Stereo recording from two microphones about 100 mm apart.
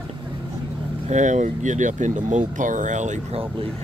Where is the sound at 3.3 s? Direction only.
65° right (ahead or behind).